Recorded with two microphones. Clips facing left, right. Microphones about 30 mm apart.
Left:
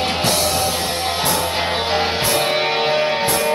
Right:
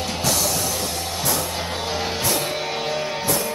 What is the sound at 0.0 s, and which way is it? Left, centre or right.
Music, left.